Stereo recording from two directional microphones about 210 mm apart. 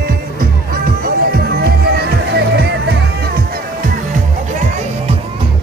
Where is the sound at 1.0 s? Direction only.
50° right (ahead or behind).